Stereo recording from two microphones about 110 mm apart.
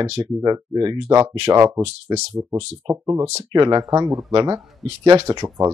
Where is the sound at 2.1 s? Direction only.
40° right (ahead or behind).